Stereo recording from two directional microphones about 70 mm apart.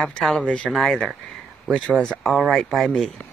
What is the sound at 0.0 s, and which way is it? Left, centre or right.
Speech, centre.